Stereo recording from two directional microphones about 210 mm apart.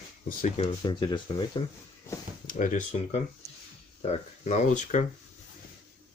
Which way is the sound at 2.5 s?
40° left (ahead or behind).